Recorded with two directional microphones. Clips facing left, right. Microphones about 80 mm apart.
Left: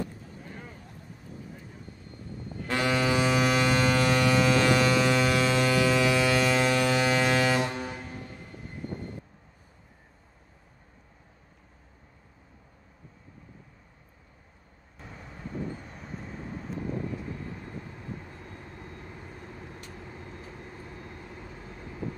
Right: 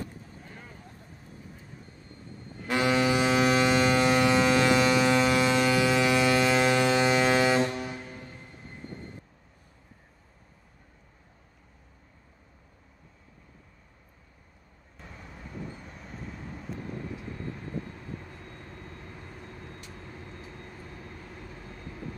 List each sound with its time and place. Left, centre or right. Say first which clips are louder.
2.7 s ship: right 1 dB; right
7.7 s vehicle: even; left